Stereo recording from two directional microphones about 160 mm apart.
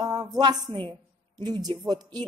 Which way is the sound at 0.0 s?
25° right (ahead or behind).